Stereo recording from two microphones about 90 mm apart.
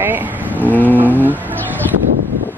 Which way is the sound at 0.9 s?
20° right (ahead or behind).